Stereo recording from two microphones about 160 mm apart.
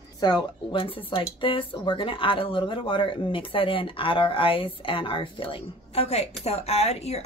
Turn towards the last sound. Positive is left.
turn(degrees=40)  # may be behind; listen again after turning